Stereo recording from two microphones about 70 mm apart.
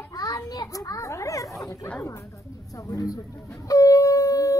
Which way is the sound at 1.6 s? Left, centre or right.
Left.